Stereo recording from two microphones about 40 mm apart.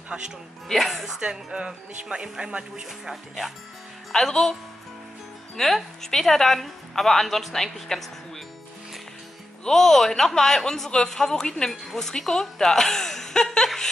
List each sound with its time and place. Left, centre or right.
0.7 s a woman's voice: centre
1.2 s speech: right
4.1 s a woman's voice: centre
5.6 s a woman's voice: centre
9.7 s a woman's voice: centre
11.8 s speech: centre
12.1 s a woman's voice: centre